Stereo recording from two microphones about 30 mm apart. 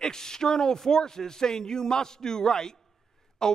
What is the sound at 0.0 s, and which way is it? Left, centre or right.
A man's voice, centre.